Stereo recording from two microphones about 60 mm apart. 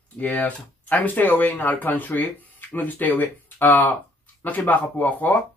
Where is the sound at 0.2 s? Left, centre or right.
Centre.